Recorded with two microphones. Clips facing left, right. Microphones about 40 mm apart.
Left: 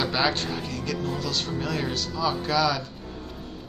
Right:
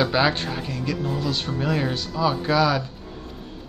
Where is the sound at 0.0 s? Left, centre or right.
Centre.